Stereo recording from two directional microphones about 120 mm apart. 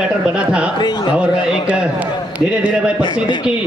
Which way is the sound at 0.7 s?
35° left (ahead or behind).